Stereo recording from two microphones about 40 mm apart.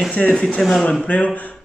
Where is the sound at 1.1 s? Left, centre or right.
Left.